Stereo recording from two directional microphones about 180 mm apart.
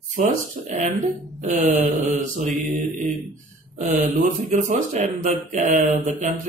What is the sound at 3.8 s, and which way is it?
Speech, 40° right (ahead or behind).